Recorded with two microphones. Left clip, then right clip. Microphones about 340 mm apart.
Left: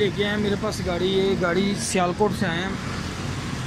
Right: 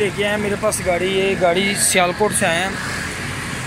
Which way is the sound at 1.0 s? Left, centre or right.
Right.